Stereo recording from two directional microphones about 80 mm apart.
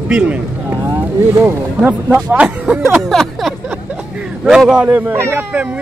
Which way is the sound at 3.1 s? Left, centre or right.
Centre.